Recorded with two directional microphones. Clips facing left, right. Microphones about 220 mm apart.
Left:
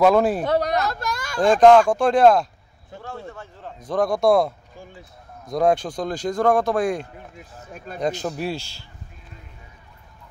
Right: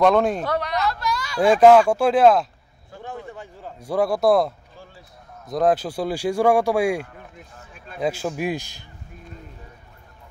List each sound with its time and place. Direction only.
0.0 s speech: 5° left (ahead or behind)
0.6 s speech: 45° left (ahead or behind)
1.4 s speech: 10° right (ahead or behind)
7.6 s speech: 40° left (ahead or behind)
8.0 s speech: 5° right (ahead or behind)